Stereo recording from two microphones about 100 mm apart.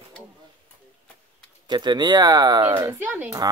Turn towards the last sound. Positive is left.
turn(degrees=-20)  # may be behind; listen again after turning